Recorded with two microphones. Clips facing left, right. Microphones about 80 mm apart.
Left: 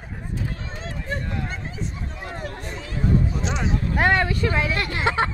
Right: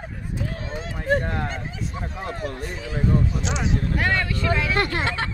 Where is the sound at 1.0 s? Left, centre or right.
Right.